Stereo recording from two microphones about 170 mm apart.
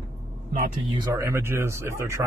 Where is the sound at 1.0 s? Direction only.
15° right (ahead or behind).